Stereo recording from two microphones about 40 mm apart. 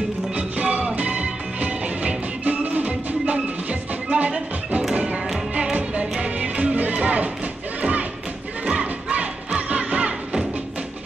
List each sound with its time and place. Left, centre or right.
0.4 s music: right
8.7 s battle cry: right